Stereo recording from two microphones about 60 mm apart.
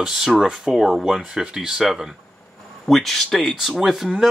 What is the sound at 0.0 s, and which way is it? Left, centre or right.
Speech, centre.